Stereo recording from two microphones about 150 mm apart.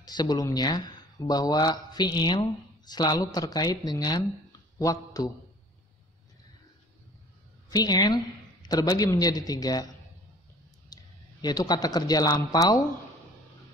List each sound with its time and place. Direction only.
0.0 s speech: 30° left (ahead or behind)
7.7 s speech: 25° left (ahead or behind)
10.9 s clicking: 25° left (ahead or behind)
11.4 s speech: 30° left (ahead or behind)